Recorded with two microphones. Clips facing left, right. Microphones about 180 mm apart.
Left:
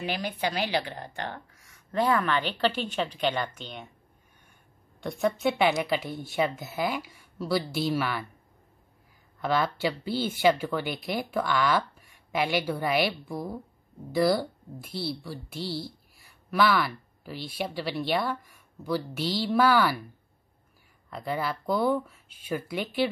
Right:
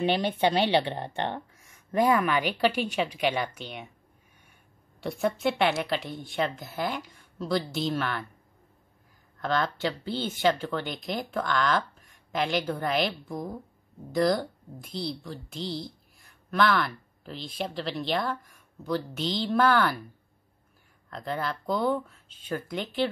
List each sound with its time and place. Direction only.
0.0 s a woman's voice: 25° right (ahead or behind); by 3.9 s 5° right (ahead or behind)
5.0 s a woman's voice: centre (ahead or behind)
9.4 s a woman's voice: 10° left (ahead or behind)
21.1 s speech: 5° left (ahead or behind)